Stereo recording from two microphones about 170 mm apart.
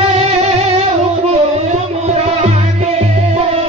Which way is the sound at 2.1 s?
40° right (ahead or behind).